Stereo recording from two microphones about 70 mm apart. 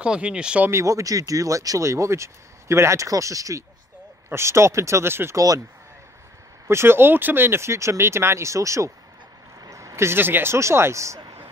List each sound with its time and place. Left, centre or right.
0.0 s speech: centre
0.7 s speech: right
5.3 s speech: right
6.7 s speech: right